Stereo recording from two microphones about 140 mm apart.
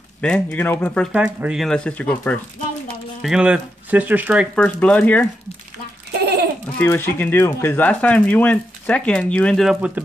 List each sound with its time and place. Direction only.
0.2 s speech: 10° left (ahead or behind)
1.1 s speech: 5° right (ahead or behind)
1.7 s speech: 10° left (ahead or behind)
3.2 s speech: 5° right (ahead or behind)
4.6 s speech: 10° left (ahead or behind)
6.8 s speech: 15° left (ahead or behind)
9.8 s speech: 10° right (ahead or behind)